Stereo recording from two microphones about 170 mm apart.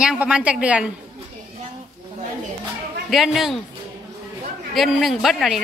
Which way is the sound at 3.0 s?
Centre (ahead or behind).